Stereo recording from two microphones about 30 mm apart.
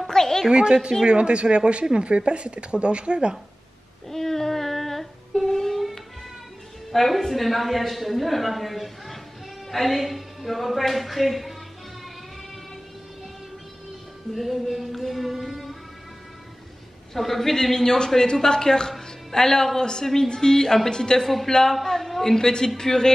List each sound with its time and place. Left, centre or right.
0.0 s a sound: centre
0.5 s a woman's voice: right
4.1 s a sound: centre
5.4 s music: centre
6.9 s a woman's voice: centre
14.3 s a woman's voice: centre
15.4 s music: centre
17.1 s speech: centre; by 21.2 s left
21.2 s a woman's voice: centre
21.5 s speech: centre
21.8 s a sound: centre
22.1 s a woman's voice: centre